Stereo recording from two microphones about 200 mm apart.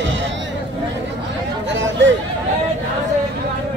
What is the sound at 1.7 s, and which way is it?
Chatter, 65° right (ahead or behind).